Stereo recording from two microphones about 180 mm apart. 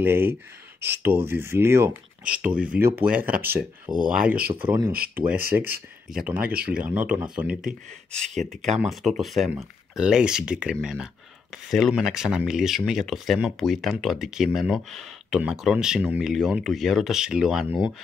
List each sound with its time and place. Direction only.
0.0 s speech: 10° right (ahead or behind)
0.7 s speech: 65° right (ahead or behind)
1.0 s speech: 10° right (ahead or behind)
8.7 s speech: centre (ahead or behind)